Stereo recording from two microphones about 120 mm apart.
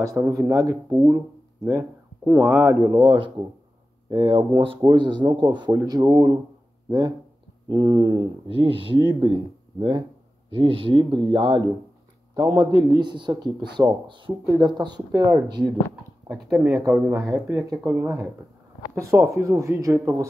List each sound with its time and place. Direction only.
0.0 s speech: 25° right (ahead or behind)
2.3 s speech: 10° right (ahead or behind); by 5.8 s 40° right (ahead or behind)
5.8 s speech: 30° right (ahead or behind)
7.6 s speech: 45° right (ahead or behind)
16.6 s speech: 5° right (ahead or behind); by 20.0 s 25° right (ahead or behind)